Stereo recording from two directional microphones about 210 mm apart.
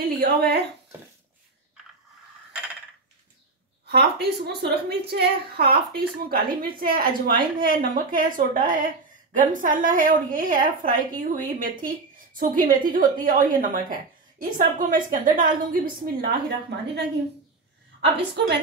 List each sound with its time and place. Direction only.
0.0 s speech: 50° right (ahead or behind)
2.5 s a sound: 5° right (ahead or behind)
3.8 s a woman's voice: 50° right (ahead or behind)